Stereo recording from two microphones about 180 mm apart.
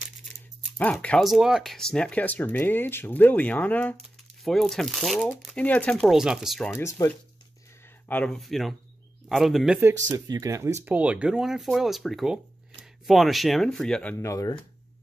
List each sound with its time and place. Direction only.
0.7 s speech: 10° left (ahead or behind)
7.0 s speech: 20° left (ahead or behind); by 9.8 s centre (ahead or behind)
10.1 s speech: 20° right (ahead or behind); by 14.1 s 5° left (ahead or behind)
14.1 s speech: 15° left (ahead or behind)